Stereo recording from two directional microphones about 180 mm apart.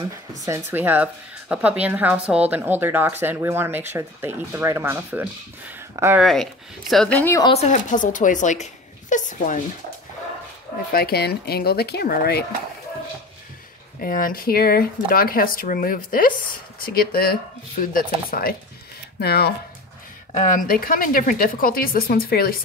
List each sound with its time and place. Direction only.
0.5 s speech: 10° right (ahead or behind)
6.2 s speech: centre (ahead or behind)
7.4 s speech: 35° left (ahead or behind)
10.9 s speech: 60° left (ahead or behind)
14.0 s speech: 50° left (ahead or behind)
20.3 s speech: 45° left (ahead or behind)